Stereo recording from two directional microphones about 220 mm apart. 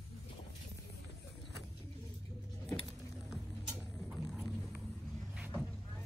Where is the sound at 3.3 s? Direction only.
Centre (ahead or behind).